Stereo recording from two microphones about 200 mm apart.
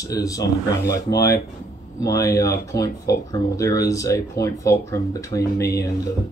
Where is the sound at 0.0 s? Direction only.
15° left (ahead or behind).